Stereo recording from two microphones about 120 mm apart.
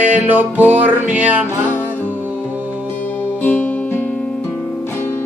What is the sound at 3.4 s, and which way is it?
Music, 15° left (ahead or behind).